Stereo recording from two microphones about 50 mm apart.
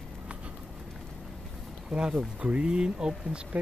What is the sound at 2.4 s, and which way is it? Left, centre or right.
Speech, right.